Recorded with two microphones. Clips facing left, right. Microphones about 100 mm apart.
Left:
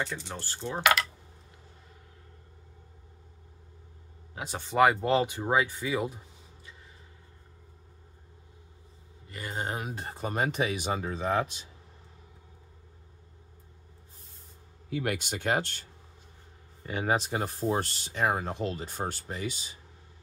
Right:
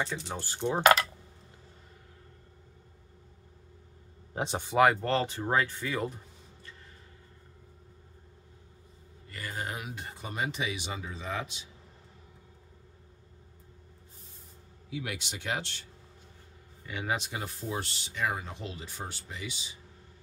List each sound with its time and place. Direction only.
0.0 s speech: centre (ahead or behind)
0.4 s speech: 15° right (ahead or behind)
4.7 s speech: 10° right (ahead or behind)
5.0 s speech: 10° left (ahead or behind)
9.3 s speech: 25° left (ahead or behind); by 11.6 s 45° left (ahead or behind)
14.9 s speech: 50° left (ahead or behind)